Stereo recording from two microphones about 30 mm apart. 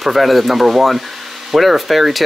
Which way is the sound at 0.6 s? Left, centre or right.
Centre.